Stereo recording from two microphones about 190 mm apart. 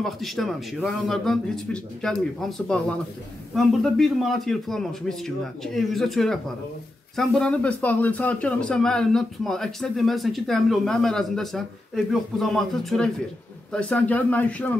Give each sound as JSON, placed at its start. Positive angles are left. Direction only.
{"t": 0.0, "sound": "a man's voice", "side_deg": 0}